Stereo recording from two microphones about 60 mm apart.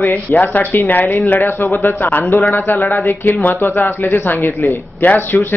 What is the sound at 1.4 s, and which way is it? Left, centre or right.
A woman's voice, left.